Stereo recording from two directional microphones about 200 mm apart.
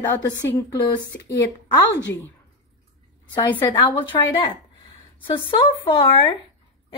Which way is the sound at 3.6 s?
25° left (ahead or behind).